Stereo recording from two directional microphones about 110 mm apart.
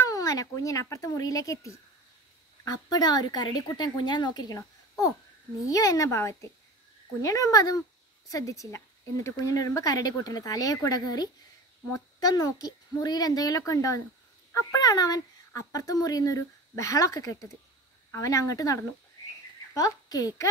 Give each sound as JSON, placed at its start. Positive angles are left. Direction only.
{"t": 0.0, "sound": "a woman's voice", "side_deg": 30}